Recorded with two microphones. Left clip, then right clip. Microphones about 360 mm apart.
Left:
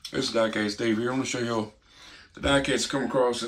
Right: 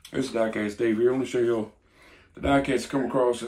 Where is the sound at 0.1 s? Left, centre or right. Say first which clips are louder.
Left 1 dB; centre.